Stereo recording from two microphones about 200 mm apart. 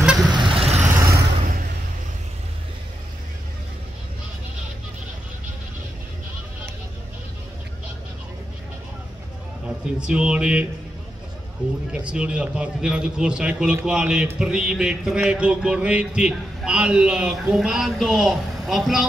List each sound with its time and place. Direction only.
0.0 s vehicle: 5° right (ahead or behind)
0.3 s vehicle: 25° right (ahead or behind)
1.0 s vehicle: 45° right (ahead or behind)
9.7 s a man's voice: 5° right (ahead or behind)
11.9 s a man's voice: 5° right (ahead or behind)